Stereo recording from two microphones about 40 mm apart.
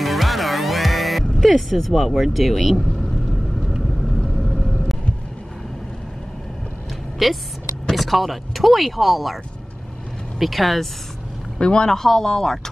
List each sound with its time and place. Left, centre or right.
0.0 s music: centre
4.4 s vehicle: centre
7.2 s speech: centre
10.4 s speech: centre
11.5 s speech: left
11.9 s speech: centre